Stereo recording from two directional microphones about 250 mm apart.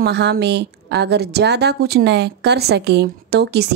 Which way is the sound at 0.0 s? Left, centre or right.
Right.